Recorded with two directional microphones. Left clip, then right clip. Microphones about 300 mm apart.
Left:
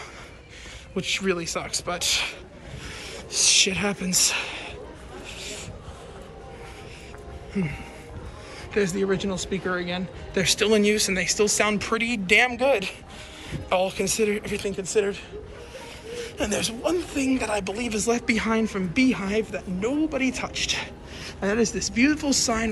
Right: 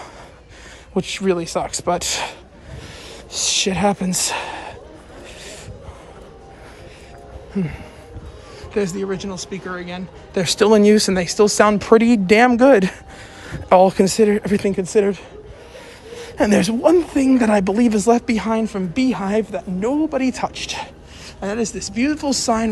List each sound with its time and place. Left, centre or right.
0.9 s speech: centre
3.1 s a sound: centre
7.5 s speech: centre
10.4 s speech: centre
12.6 s speech: right
13.7 s speech: right
14.8 s speech: right
16.1 s a sound: centre
16.4 s speech: right